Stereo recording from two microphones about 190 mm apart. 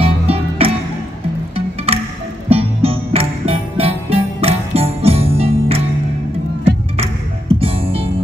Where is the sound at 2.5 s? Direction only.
30° right (ahead or behind).